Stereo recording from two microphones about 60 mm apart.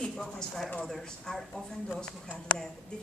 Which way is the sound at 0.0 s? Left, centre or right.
Centre.